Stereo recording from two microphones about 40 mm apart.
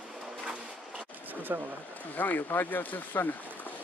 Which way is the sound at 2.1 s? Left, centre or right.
Left.